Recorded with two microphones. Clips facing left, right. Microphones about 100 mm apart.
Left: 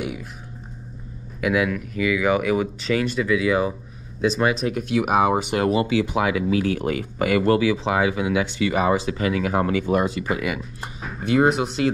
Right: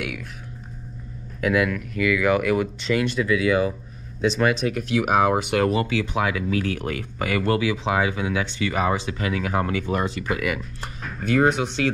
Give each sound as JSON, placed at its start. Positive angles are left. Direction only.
{"t": 1.4, "sound": "speech", "side_deg": 10}
{"t": 3.3, "sound": "speech", "side_deg": 30}
{"t": 4.3, "sound": "speech", "side_deg": 5}
{"t": 5.7, "sound": "speech", "side_deg": 25}
{"t": 10.6, "sound": "speech", "side_deg": 5}